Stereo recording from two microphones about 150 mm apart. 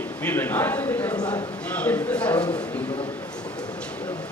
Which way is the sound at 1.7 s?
10° left (ahead or behind).